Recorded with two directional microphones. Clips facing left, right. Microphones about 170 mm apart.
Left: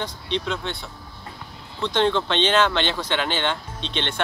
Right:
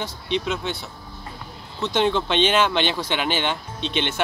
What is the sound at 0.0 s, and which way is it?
A man's voice, 5° right (ahead or behind).